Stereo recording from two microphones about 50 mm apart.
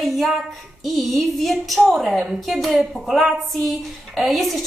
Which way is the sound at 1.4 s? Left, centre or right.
Centre.